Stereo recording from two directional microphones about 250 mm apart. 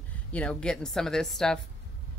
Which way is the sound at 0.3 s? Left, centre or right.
Centre.